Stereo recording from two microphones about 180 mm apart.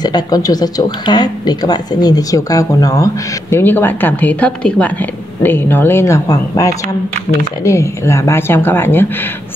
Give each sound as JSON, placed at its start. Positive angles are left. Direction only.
{"t": 0.0, "sound": "speech", "side_deg": 20}